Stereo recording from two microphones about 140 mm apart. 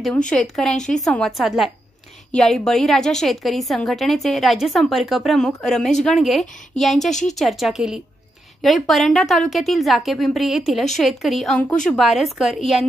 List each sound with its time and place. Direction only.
0.3 s a woman's voice: 5° left (ahead or behind)
7.1 s a woman's voice: 60° left (ahead or behind)
7.3 s a woman's voice: centre (ahead or behind)